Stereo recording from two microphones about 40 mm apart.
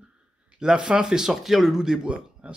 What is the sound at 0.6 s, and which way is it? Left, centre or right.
Speech, centre.